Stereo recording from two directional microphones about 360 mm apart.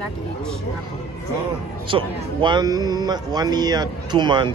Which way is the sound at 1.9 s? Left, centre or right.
Centre.